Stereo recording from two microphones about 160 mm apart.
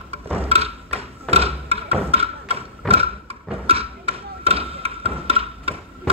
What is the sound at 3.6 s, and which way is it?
Thump, 35° right (ahead or behind).